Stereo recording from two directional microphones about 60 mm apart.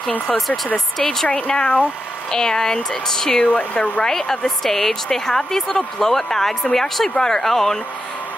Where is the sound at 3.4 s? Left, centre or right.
Left.